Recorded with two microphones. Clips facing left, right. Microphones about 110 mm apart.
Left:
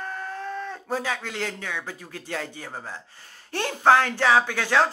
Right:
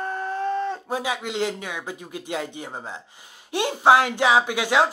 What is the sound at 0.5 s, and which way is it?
Speech, 25° right (ahead or behind).